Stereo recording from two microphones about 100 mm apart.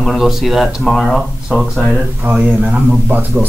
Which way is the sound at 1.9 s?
15° right (ahead or behind).